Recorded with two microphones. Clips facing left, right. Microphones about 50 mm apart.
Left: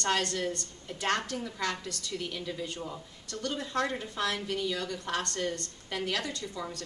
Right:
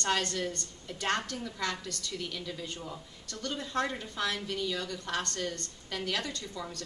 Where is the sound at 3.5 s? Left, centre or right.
Left.